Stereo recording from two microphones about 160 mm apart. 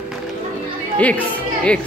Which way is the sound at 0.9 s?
10° left (ahead or behind).